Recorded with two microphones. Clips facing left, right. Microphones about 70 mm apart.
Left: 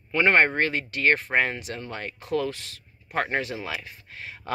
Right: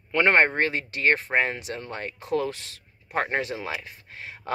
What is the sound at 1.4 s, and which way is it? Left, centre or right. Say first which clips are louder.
Speech: even; right.